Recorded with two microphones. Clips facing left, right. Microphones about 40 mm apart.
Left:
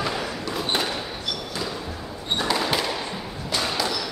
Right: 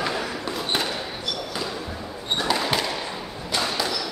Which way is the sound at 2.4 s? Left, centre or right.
Centre.